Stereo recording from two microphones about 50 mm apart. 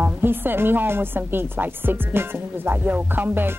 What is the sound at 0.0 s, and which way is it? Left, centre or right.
A man's voice, right.